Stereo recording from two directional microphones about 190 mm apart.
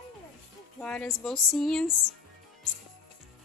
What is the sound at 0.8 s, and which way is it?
Speech, 5° left (ahead or behind).